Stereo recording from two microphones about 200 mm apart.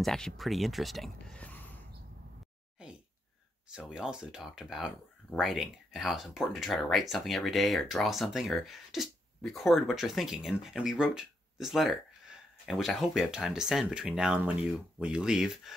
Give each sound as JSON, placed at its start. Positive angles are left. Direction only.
{"t": 0.0, "sound": "speech", "side_deg": 0}
{"t": 2.8, "sound": "a sound", "side_deg": -5}
{"t": 3.7, "sound": "speech", "side_deg": 0}